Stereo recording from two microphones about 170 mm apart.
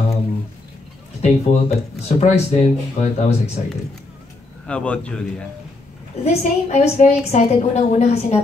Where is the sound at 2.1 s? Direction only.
40° left (ahead or behind).